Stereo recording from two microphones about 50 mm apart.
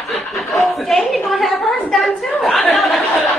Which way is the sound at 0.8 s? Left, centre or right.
Centre.